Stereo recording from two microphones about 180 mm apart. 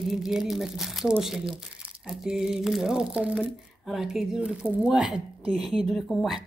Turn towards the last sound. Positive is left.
turn(degrees=0)  # may be behind; listen again after turning